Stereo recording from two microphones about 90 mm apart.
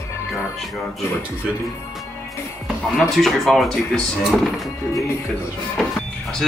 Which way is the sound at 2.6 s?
Centre (ahead or behind).